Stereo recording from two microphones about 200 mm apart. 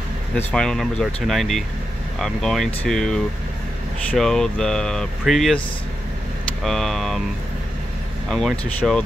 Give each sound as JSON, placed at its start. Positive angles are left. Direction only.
{"t": 0.5, "sound": "speech", "side_deg": 5}
{"t": 6.6, "sound": "speech", "side_deg": 0}
{"t": 8.3, "sound": "speech", "side_deg": 0}